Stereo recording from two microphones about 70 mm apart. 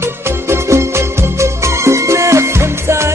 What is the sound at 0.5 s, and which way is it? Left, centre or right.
Music, right.